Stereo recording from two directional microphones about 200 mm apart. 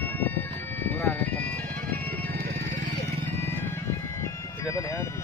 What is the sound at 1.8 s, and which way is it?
Music, 10° left (ahead or behind).